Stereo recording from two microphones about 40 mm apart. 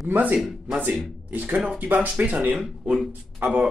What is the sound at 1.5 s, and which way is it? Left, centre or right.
Speech, right.